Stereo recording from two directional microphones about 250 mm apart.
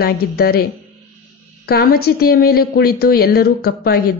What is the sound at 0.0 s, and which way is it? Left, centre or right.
Speech, left.